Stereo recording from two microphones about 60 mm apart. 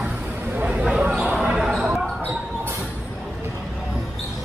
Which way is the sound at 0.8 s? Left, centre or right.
Centre.